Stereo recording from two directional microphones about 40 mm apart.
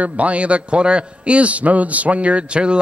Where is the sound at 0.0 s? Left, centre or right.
Right.